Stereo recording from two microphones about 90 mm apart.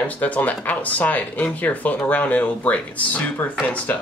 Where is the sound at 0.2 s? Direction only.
15° left (ahead or behind).